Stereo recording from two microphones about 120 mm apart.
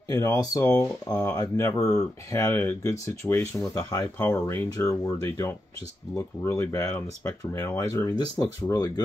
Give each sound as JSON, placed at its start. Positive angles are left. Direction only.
{"t": 0.1, "sound": "speech", "side_deg": 30}